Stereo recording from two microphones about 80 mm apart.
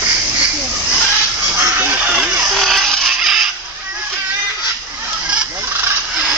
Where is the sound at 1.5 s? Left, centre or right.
Right.